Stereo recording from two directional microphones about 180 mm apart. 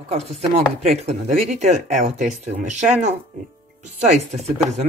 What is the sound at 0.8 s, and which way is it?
Speech, 35° right (ahead or behind).